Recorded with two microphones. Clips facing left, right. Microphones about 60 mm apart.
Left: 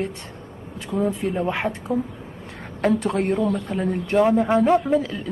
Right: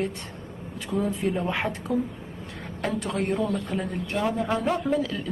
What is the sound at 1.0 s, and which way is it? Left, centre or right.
Speech, left.